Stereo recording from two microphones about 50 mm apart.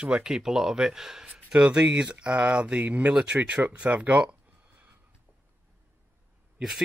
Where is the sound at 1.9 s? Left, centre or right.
Right.